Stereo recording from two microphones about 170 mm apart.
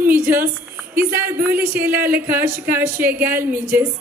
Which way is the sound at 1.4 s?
10° right (ahead or behind).